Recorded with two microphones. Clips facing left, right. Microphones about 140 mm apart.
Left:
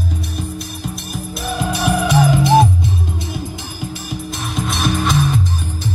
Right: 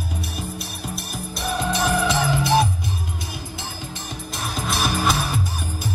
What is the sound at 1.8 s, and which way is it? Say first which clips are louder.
Music: left 8 dB; 15° left (ahead or behind).